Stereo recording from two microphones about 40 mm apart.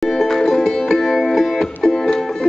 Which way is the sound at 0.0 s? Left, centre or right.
Centre.